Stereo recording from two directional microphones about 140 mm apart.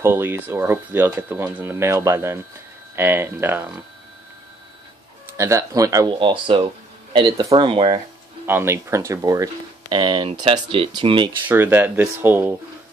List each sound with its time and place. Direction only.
0.0 s speech: 15° right (ahead or behind)
5.4 s speech: 20° right (ahead or behind)
6.4 s speech: 35° right (ahead or behind)
8.5 s speech: 15° right (ahead or behind)
9.9 s speech: 35° right (ahead or behind)
11.4 s speech: 15° right (ahead or behind)